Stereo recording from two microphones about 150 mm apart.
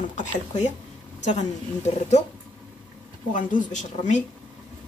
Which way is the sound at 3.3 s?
60° left (ahead or behind).